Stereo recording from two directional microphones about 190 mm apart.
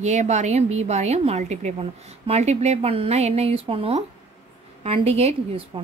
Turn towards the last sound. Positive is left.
turn(degrees=-30)  # may be behind; listen again after turning